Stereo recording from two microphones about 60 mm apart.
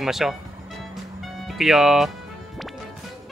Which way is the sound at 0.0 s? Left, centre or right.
Centre.